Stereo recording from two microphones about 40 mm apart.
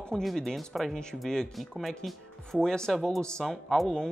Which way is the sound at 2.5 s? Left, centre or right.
Centre.